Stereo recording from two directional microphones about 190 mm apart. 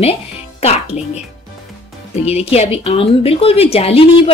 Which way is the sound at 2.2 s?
30° left (ahead or behind).